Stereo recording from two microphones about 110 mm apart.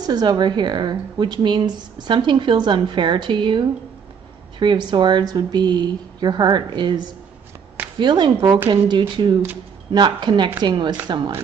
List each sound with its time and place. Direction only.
0.0 s a woman's voice: 40° right (ahead or behind)